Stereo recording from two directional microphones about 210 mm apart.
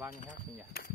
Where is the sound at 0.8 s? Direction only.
45° left (ahead or behind).